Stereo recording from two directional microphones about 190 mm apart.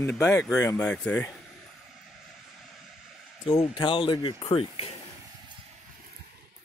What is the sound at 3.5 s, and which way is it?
Speech, 25° left (ahead or behind).